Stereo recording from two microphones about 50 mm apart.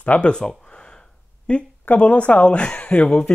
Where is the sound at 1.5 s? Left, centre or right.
Left.